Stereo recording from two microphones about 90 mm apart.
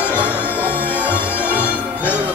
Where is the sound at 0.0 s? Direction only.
15° right (ahead or behind).